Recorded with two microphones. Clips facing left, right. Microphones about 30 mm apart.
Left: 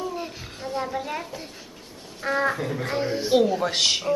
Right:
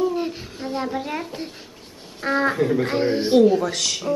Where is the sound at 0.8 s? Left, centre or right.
Centre.